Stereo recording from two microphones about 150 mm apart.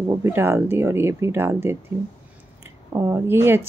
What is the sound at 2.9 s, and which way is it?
Speech, 20° right (ahead or behind).